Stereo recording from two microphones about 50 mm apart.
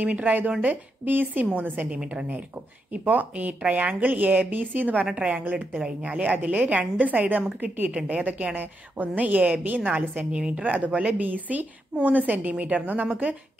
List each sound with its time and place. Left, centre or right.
0.0 s a woman's voice: right
5.1 s a woman's voice: right
5.4 s a woman's voice: right
5.8 s a woman's voice: centre
10.3 s a woman's voice: right
10.6 s a woman's voice: right
10.9 s a woman's voice: centre
11.1 s a woman's voice: right